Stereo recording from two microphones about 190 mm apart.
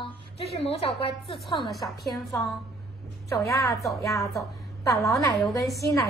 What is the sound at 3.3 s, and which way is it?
Speech, 15° left (ahead or behind).